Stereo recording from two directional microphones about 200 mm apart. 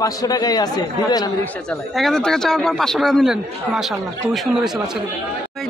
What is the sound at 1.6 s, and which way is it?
A man's voice, centre (ahead or behind).